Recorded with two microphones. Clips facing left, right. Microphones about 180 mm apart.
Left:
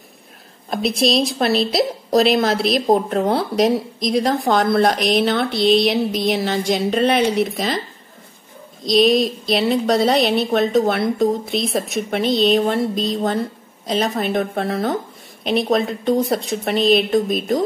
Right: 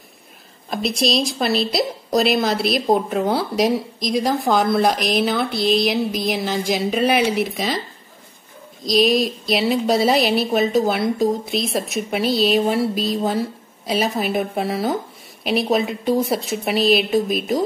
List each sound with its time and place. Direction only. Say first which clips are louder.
0.7 s a woman's voice: left 2 dB; centre (ahead or behind)
8.8 s a woman's voice: left 2 dB; centre (ahead or behind)